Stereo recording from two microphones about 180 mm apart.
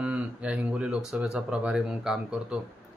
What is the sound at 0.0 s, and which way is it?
Speech, 5° right (ahead or behind).